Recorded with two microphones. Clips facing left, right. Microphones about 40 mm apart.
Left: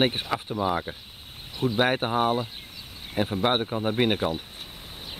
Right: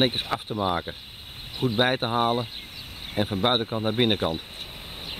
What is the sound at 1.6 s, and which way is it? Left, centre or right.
Speech, centre.